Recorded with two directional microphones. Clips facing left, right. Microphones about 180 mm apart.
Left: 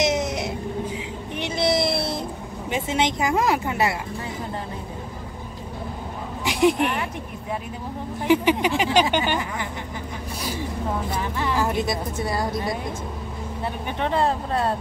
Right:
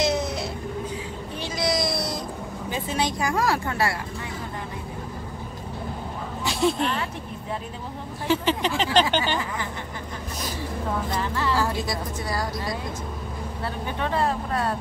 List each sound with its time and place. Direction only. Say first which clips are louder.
0.0 s music: left 2 dB; 20° left (ahead or behind)
1.3 s a sound: left 4 dB; 25° left (ahead or behind)
2.7 s speech: left 4 dB; 20° left (ahead or behind)
6.4 s a woman's voice: left 4 dB; 15° left (ahead or behind)
8.3 s speech: left 4 dB; 10° left (ahead or behind)
11.1 s speech: right 1 dB; 15° left (ahead or behind)
13.8 s speech: left 3 dB; 20° left (ahead or behind)